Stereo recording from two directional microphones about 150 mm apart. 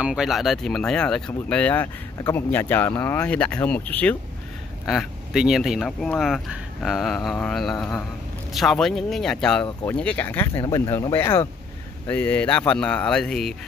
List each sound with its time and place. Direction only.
0.0 s speech: 5° right (ahead or behind)
4.8 s speech: 5° right (ahead or behind)